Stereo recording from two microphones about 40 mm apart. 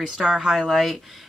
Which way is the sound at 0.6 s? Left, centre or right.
Centre.